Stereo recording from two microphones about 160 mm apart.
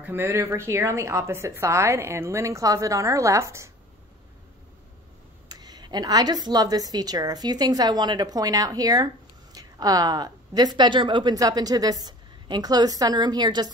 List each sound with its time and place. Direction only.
0.0 s a woman's voice: 15° right (ahead or behind)
5.5 s a woman's voice: 25° right (ahead or behind)